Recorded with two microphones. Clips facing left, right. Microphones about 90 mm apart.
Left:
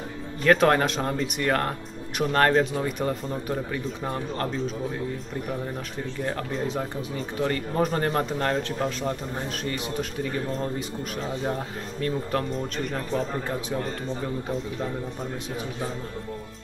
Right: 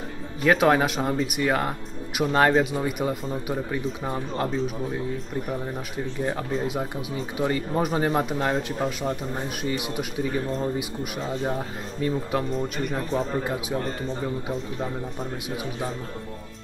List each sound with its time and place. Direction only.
0.4 s speech: 5° right (ahead or behind)
6.2 s speech: 10° right (ahead or behind)